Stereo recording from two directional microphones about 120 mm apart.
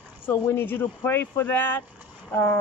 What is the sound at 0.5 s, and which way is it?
A man's voice, 20° left (ahead or behind).